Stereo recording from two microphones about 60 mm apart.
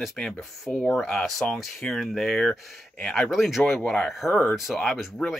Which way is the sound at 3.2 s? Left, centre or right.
Centre.